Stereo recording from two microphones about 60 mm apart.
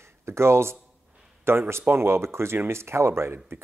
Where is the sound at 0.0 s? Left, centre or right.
Right.